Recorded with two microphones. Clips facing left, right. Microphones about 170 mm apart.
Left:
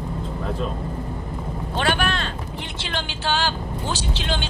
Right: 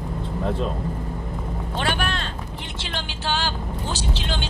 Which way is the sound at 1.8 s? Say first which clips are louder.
Left 3 dB; 85° left.